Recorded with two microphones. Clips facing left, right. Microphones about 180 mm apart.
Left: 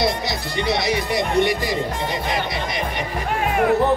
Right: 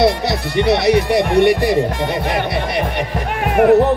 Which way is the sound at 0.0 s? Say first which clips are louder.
Right 7 dB; 60° right (ahead or behind).